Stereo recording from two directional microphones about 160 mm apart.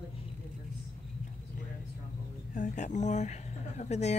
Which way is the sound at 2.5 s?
50° left (ahead or behind).